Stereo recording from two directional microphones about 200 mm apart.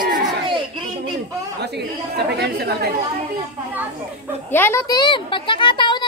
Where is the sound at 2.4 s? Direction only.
55° right (ahead or behind).